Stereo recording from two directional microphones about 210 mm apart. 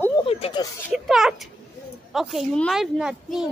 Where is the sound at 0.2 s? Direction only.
25° left (ahead or behind).